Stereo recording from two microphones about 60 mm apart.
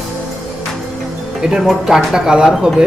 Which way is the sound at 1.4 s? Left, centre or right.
Centre.